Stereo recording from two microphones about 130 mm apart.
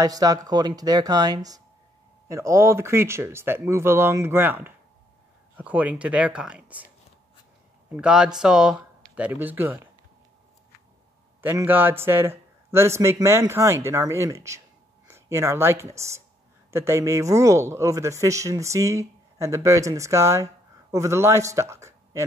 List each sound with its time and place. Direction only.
0.0 s speech: 30° right (ahead or behind); by 6.9 s 10° right (ahead or behind)
7.9 s speech: 5° right (ahead or behind)
11.6 s speech: 15° right (ahead or behind)